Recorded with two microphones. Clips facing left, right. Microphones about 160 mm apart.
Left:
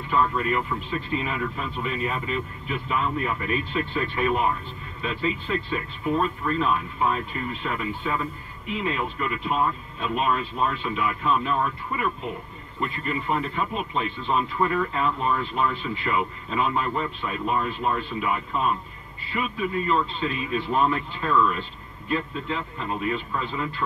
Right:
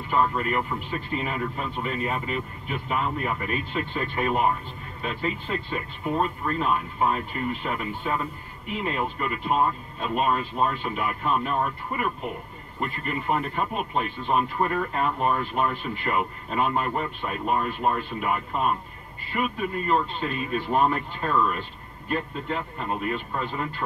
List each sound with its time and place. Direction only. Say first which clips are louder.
0.1 s speech: even; 40° right (ahead or behind)
12.8 s speech: even; 45° right (ahead or behind)